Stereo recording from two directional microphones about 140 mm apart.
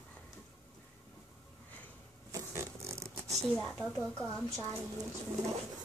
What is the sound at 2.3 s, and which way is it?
Zipper, 20° right (ahead or behind).